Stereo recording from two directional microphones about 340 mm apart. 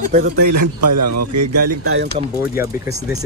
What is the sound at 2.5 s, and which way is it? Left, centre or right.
Speech, centre.